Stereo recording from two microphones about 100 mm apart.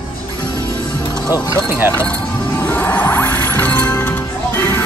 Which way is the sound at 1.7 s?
20° right (ahead or behind).